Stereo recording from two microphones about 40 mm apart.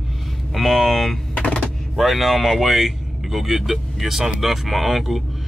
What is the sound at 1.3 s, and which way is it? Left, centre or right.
Music, left.